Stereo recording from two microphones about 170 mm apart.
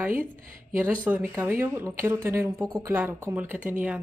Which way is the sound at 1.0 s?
10° right (ahead or behind).